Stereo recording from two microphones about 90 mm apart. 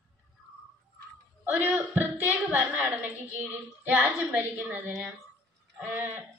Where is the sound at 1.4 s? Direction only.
20° right (ahead or behind).